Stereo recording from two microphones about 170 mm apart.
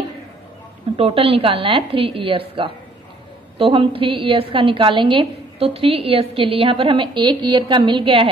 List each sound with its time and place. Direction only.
0.9 s a woman's voice: 35° right (ahead or behind)